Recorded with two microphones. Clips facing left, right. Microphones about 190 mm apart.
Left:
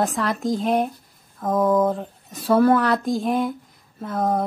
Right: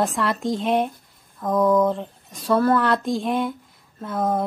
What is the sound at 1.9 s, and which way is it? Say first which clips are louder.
Speech: even; 5° left (ahead or behind).